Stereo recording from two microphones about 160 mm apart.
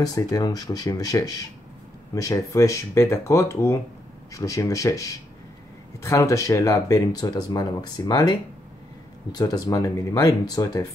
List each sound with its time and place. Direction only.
0.0 s speech: 20° left (ahead or behind)